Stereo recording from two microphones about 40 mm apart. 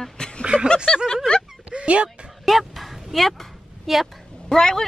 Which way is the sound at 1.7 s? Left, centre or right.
Right.